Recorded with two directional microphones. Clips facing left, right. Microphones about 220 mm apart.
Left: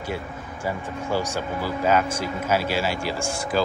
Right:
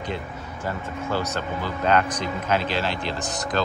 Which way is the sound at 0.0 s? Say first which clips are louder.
Even; 10° left (ahead or behind).